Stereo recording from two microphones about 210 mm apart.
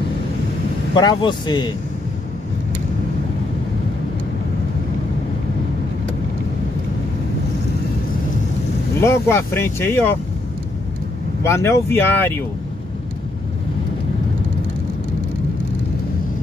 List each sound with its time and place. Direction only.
0.9 s speech: 20° left (ahead or behind)
9.0 s speech: 10° left (ahead or behind)
11.4 s speech: 15° left (ahead or behind)